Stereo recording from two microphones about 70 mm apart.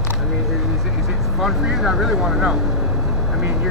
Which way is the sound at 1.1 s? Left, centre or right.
Centre.